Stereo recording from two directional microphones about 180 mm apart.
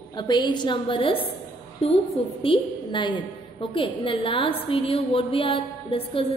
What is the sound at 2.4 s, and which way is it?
A woman's voice, 25° left (ahead or behind).